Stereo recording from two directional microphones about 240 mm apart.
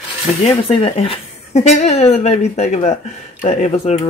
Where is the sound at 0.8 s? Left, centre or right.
Left.